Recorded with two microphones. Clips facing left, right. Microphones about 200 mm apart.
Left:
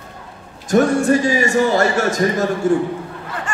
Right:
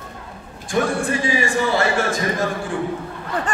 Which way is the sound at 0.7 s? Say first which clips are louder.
Left 7 dB; 40° left (ahead or behind).